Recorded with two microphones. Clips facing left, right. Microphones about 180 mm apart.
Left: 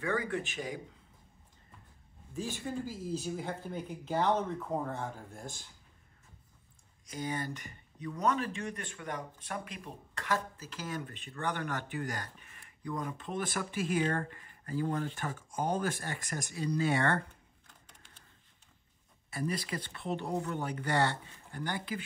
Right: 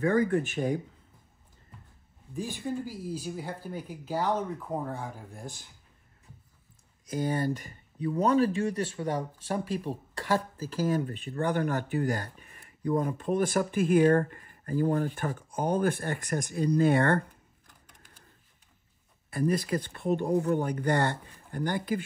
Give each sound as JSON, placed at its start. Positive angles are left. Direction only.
{"t": 0.0, "sound": "speech", "side_deg": -45}
{"t": 2.3, "sound": "speech", "side_deg": -15}
{"t": 7.1, "sound": "speech", "side_deg": -45}
{"t": 19.3, "sound": "speech", "side_deg": -50}